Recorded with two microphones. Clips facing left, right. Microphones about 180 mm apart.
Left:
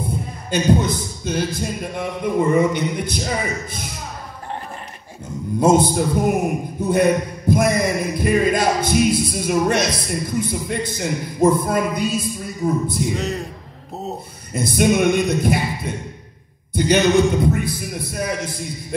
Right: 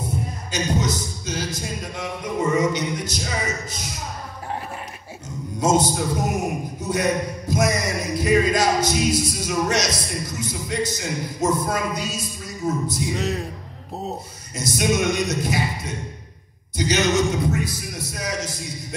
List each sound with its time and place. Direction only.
0.0 s a man's voice: 55° left (ahead or behind)
5.6 s a man's voice: 55° left (ahead or behind)
13.0 s speech: centre (ahead or behind)
14.5 s a man's voice: 55° left (ahead or behind)